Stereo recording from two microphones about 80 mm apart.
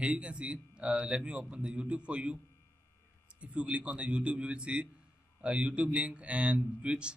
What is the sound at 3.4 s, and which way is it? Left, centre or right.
Speech, centre.